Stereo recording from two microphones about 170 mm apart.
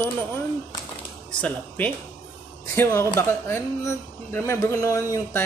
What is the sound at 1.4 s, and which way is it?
Speech, 10° left (ahead or behind).